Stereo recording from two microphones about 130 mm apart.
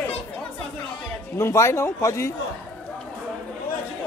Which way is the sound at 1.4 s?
20° left (ahead or behind).